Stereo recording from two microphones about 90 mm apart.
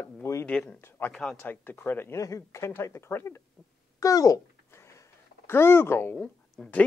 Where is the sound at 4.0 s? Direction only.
40° left (ahead or behind).